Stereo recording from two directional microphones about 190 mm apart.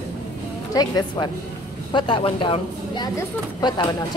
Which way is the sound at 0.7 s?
20° left (ahead or behind).